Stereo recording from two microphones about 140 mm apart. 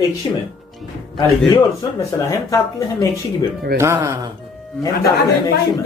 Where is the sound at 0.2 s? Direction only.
30° left (ahead or behind).